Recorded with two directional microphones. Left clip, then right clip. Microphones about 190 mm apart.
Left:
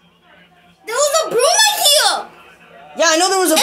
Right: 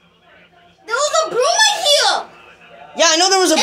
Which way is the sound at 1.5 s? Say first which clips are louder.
Right 1 dB; 60° left (ahead or behind).